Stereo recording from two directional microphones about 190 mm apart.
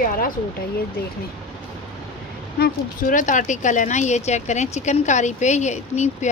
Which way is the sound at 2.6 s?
45° left (ahead or behind).